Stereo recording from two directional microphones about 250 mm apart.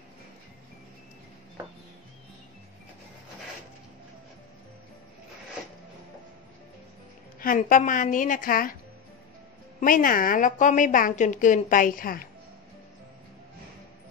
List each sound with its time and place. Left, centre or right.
7.3 s a woman's voice: left
9.8 s a woman's voice: left